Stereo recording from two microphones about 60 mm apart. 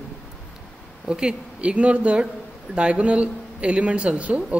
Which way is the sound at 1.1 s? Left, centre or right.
Centre.